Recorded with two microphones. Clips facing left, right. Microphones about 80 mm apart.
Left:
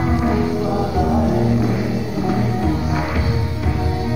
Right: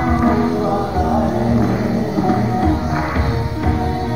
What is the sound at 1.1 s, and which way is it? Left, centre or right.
Music, right.